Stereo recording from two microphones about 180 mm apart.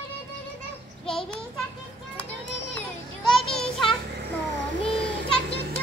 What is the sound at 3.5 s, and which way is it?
Music, centre (ahead or behind).